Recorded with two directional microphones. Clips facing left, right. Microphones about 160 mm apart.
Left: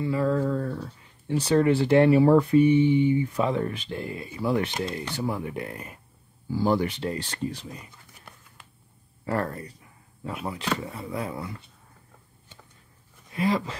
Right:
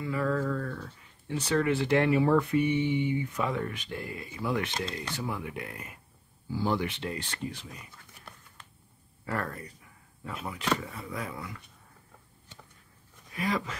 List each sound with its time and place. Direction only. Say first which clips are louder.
0.0 s speech: left 5 dB; 30° left (ahead or behind)
9.2 s speech: left 6 dB; 30° left (ahead or behind)
10.8 s speech: left 5 dB; 30° left (ahead or behind)
13.3 s speech: left 6 dB; 30° left (ahead or behind)